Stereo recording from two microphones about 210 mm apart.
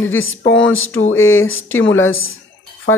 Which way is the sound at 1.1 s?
75° left (ahead or behind).